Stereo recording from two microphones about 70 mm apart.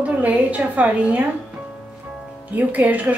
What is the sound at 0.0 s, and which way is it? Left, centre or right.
A woman's voice, right.